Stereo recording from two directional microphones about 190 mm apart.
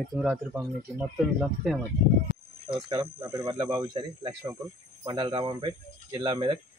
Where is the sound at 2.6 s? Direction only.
20° right (ahead or behind).